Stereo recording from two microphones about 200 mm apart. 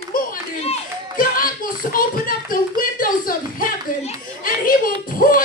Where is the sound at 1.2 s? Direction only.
45° left (ahead or behind).